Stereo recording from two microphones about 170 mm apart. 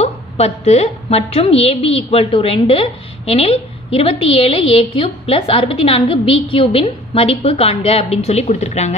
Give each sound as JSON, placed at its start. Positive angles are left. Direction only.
{"t": 0.0, "sound": "a woman's voice", "side_deg": 40}